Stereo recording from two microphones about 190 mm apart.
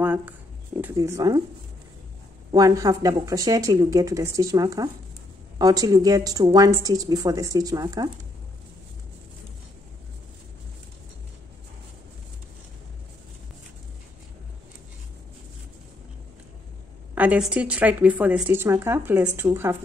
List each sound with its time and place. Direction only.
0.0 s a sound: 10° right (ahead or behind)
0.9 s a woman's voice: 15° right (ahead or behind)
2.5 s a woman's voice: 20° right (ahead or behind)
17.1 s speech: 10° right (ahead or behind)